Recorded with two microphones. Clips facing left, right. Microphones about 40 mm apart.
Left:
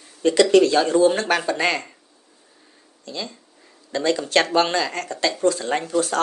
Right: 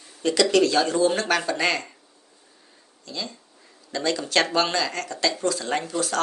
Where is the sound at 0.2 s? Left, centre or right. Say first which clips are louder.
Left 4 dB; left.